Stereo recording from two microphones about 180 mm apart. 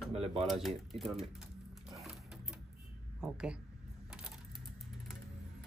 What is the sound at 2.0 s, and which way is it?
Typewriter, 5° right (ahead or behind).